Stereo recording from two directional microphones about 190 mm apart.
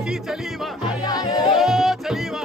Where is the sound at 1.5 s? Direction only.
Centre (ahead or behind).